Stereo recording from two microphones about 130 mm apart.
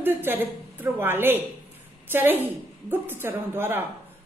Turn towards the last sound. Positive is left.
turn(degrees=-15)  # may be behind; listen again after turning